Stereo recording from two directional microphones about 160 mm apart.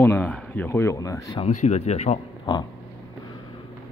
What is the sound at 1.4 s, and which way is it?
Speech, 45° left (ahead or behind).